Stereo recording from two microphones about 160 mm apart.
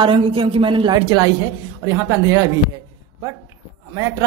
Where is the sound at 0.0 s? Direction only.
35° right (ahead or behind).